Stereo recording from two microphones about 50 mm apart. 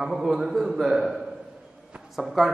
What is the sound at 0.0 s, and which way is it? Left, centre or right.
A man's voice, centre.